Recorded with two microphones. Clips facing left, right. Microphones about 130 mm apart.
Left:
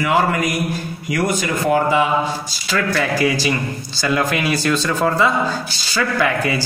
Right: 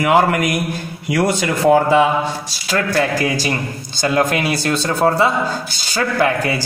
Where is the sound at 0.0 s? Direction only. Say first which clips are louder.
Right 3 dB; 80° right.